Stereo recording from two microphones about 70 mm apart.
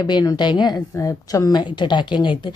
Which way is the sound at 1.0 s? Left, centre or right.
Left.